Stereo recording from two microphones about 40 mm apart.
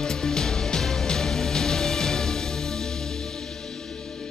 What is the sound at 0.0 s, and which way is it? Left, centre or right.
Music, centre.